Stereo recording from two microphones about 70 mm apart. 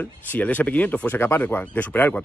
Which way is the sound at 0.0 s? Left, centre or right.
Left.